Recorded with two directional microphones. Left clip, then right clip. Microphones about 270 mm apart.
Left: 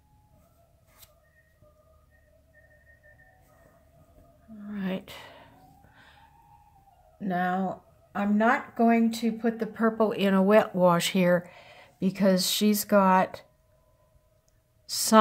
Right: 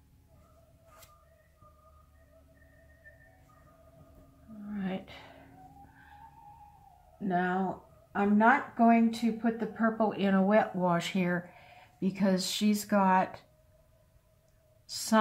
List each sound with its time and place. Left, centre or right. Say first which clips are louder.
4.6 s whispering: left 4 dB; left
7.2 s speech: left 2 dB; left
14.9 s a woman's voice: left 7 dB; left